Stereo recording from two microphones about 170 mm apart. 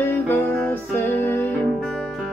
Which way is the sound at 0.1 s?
10° left (ahead or behind).